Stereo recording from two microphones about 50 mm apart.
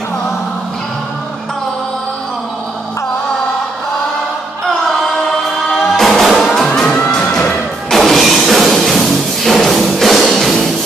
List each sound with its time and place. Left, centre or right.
5.9 s music: centre
7.1 s music: centre
7.9 s music: centre